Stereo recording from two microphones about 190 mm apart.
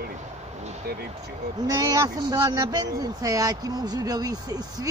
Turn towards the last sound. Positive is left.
turn(degrees=-20)  # may be behind; listen again after turning